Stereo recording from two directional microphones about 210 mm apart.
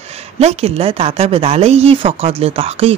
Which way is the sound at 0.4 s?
30° right (ahead or behind).